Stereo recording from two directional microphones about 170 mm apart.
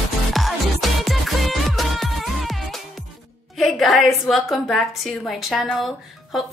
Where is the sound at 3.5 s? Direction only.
Centre (ahead or behind).